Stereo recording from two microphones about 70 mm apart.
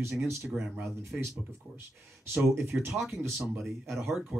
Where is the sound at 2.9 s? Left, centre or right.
Centre.